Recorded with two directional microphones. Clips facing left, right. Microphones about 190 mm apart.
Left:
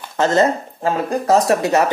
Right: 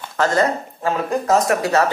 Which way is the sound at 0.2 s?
25° left (ahead or behind).